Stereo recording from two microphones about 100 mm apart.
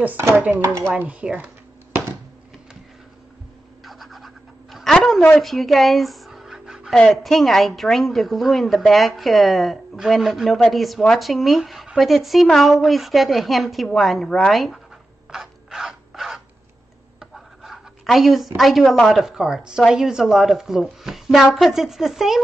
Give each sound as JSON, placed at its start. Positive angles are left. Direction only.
{"t": 0.4, "sound": "speech", "side_deg": -20}
{"t": 3.8, "sound": "scratch", "side_deg": 0}
{"t": 5.3, "sound": "pant", "side_deg": 0}
{"t": 7.0, "sound": "a woman's voice", "side_deg": 5}
{"t": 15.3, "sound": "crow", "side_deg": -5}
{"t": 17.2, "sound": "a sound", "side_deg": 0}
{"t": 18.6, "sound": "a woman's voice", "side_deg": 0}